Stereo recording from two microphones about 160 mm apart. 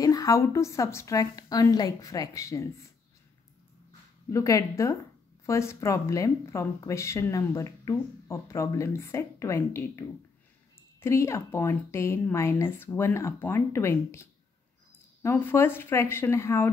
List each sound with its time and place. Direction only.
0.0 s a woman's voice: 20° left (ahead or behind)
4.3 s a woman's voice: 20° left (ahead or behind)
15.2 s speech: 15° left (ahead or behind)